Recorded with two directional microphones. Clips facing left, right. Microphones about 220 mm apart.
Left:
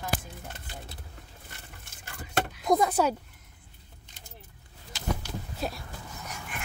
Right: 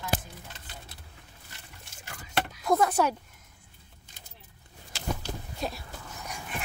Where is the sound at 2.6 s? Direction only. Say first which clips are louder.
Even; 10° left (ahead or behind).